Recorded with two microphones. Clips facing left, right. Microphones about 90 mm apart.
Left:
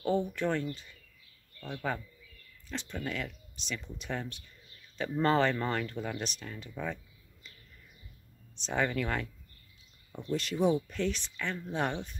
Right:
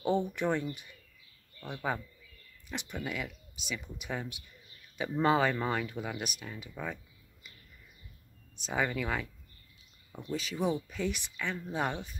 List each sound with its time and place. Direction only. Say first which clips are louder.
0.0 s speech: even; 20° right (ahead or behind)
8.5 s speech: left 1 dB; 5° right (ahead or behind)